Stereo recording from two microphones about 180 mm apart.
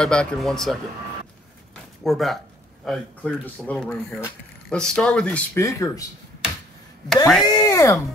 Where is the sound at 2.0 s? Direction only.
Centre (ahead or behind); by 6.0 s 15° left (ahead or behind).